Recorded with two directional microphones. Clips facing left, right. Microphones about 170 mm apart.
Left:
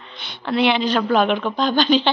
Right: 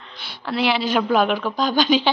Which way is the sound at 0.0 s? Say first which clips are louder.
Left 2 dB; centre (ahead or behind).